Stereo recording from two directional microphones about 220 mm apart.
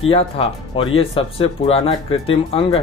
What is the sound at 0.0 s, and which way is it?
Speech, 25° left (ahead or behind).